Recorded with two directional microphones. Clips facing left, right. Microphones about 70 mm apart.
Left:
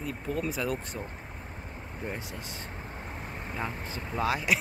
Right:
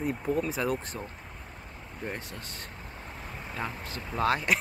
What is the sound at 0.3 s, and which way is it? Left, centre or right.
Speech, centre.